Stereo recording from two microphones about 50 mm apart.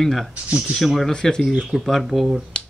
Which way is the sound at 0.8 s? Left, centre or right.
Centre.